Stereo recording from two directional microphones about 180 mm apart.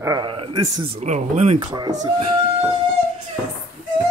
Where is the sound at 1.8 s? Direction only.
20° right (ahead or behind).